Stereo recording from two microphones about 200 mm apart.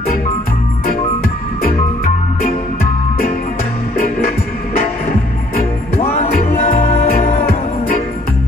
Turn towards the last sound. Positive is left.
turn(degrees=35)  # may be behind; listen again after turning